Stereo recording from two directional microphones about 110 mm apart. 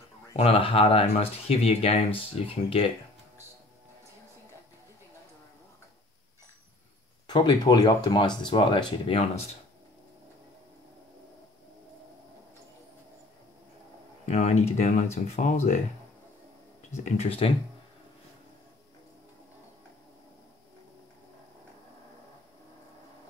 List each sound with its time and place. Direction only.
0.4 s speech: 55° left (ahead or behind)
2.1 s speech: 60° left (ahead or behind)
7.2 s speech: 40° left (ahead or behind)
9.1 s speech: 70° left (ahead or behind)
14.2 s speech: 90° left
16.9 s speech: 70° left (ahead or behind)